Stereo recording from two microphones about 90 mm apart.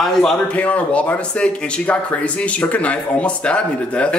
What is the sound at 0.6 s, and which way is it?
A man's voice, 15° left (ahead or behind).